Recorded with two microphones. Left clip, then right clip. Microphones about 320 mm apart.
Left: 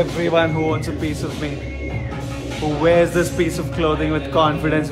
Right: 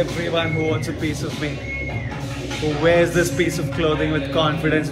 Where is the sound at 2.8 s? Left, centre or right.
Centre.